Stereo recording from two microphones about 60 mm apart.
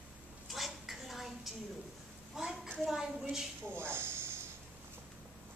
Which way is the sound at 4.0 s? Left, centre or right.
Right.